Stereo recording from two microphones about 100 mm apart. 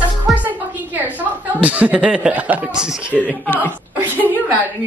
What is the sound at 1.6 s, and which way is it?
Speech, 15° right (ahead or behind).